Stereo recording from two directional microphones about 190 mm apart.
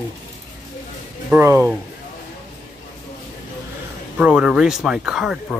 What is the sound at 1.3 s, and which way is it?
Speech, 15° right (ahead or behind).